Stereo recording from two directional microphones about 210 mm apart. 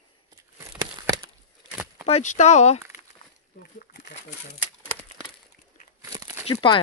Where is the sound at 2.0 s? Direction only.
30° left (ahead or behind).